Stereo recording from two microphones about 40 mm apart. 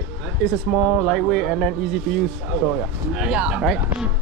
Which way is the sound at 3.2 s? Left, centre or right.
Right.